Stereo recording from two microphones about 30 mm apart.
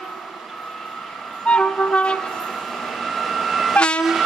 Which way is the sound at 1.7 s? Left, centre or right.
Centre.